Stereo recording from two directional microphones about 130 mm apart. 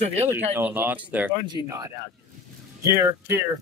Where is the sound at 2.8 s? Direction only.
20° right (ahead or behind).